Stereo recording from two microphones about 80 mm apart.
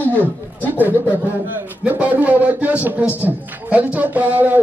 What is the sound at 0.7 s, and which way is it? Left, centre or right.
A man's voice, right.